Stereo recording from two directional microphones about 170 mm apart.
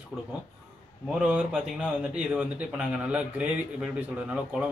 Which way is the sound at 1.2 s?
5° right (ahead or behind).